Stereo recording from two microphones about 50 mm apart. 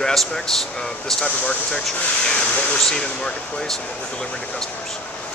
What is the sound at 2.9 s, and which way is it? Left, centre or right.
Speech, centre.